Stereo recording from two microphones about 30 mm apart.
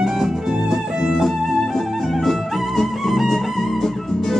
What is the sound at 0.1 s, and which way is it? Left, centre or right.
Music, centre.